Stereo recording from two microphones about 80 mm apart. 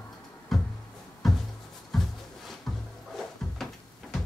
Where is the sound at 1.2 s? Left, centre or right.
Centre.